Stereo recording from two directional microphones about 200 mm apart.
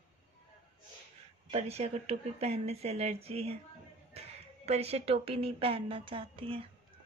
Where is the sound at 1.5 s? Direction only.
30° right (ahead or behind).